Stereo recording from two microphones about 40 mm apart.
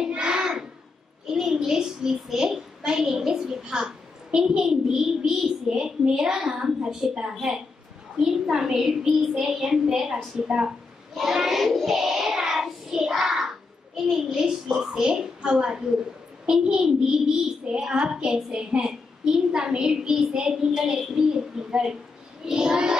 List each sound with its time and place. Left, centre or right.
0.1 s a sound: right
2.4 s a woman's voice: centre
11.1 s child singing: centre
13.1 s a child's voice: centre